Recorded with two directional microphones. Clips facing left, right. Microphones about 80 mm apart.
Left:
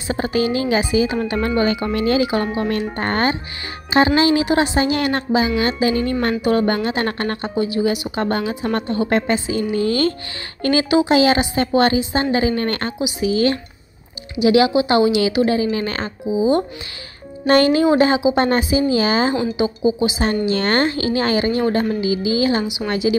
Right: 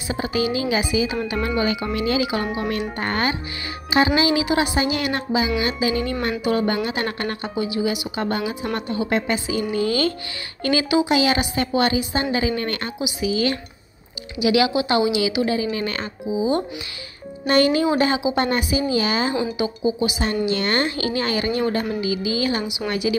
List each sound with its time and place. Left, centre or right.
0.1 s a woman's voice: left
17.5 s a woman's voice: left
19.6 s music: left
20.4 s a woman's voice: left
22.0 s music: left